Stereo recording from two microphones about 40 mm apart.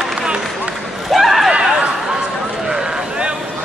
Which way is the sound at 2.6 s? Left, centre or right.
Centre.